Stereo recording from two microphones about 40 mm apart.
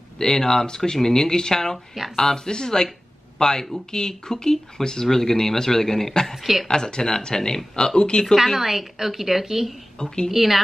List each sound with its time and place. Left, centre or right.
0.2 s speech: centre
6.3 s speech: centre
6.7 s speech: centre
8.5 s a woman's voice: centre
9.9 s speech: centre
10.3 s speech: centre